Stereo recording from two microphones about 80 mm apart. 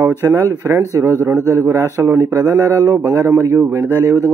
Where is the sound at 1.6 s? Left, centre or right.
Right.